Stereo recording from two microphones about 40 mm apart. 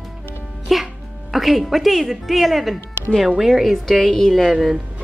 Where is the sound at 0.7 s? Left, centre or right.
Centre.